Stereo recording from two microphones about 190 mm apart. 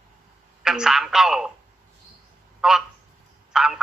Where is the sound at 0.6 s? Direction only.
5° right (ahead or behind).